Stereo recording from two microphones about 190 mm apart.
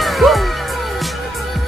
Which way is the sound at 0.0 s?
Centre (ahead or behind).